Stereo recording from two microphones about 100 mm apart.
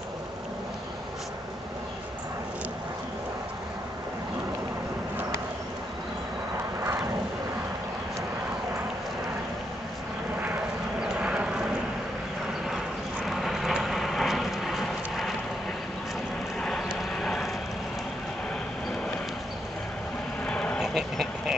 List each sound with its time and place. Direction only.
6.8 s vehicle: 25° right (ahead or behind)
11.0 s clip-clop: 10° right (ahead or behind)
12.6 s vehicle: 5° right (ahead or behind)
16.6 s vehicle: 5° left (ahead or behind)
20.4 s a sound: 10° left (ahead or behind)
20.8 s duck: 5° right (ahead or behind)